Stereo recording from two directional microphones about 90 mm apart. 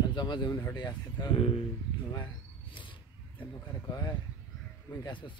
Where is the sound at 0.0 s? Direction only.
55° left (ahead or behind).